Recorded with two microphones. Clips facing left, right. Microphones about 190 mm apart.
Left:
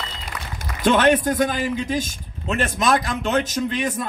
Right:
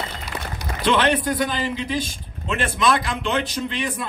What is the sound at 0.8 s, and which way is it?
A man's voice, 45° left (ahead or behind).